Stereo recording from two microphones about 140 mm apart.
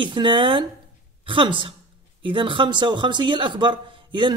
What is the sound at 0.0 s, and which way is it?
Speech, 35° right (ahead or behind).